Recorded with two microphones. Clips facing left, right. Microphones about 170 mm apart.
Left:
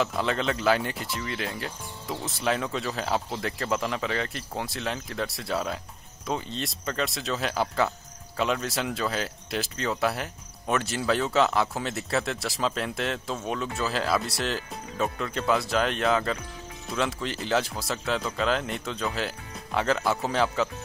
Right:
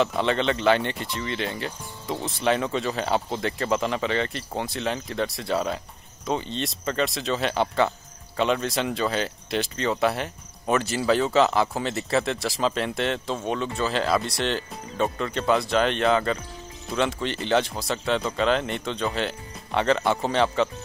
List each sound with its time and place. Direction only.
0.0 s speech: centre (ahead or behind)